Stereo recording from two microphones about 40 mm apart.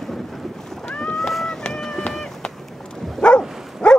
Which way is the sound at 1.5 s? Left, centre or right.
Centre.